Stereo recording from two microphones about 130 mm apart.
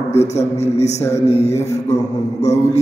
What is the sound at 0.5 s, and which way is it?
A man's voice, 60° left (ahead or behind).